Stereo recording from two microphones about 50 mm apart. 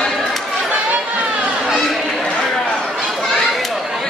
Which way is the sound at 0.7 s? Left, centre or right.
Right.